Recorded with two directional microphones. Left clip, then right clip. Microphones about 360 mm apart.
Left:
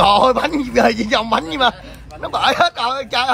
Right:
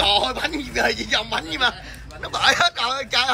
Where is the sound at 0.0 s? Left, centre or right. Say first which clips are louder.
Left 7 dB; centre.